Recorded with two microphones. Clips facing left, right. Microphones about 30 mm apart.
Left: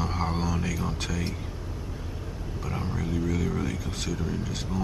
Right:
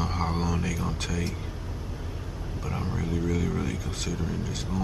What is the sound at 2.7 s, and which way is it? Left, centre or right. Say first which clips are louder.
Speech: even; centre.